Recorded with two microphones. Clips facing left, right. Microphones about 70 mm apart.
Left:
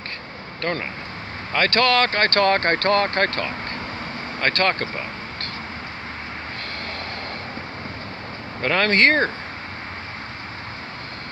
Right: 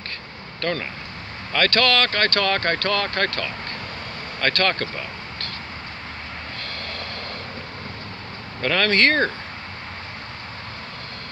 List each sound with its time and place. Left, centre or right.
0.6 s speech: left
8.5 s speech: left